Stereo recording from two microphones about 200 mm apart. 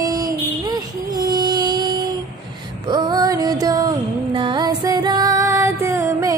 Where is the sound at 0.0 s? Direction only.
20° right (ahead or behind).